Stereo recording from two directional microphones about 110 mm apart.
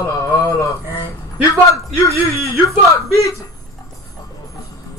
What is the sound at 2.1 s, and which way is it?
Speech, 25° right (ahead or behind).